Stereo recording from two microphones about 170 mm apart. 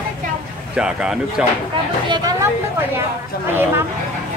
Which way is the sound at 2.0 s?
25° right (ahead or behind).